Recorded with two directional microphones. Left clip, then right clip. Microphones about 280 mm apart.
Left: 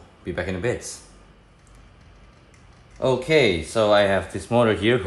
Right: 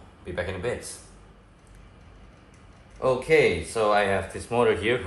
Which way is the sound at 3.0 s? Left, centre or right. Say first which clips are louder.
Left 2 dB; left.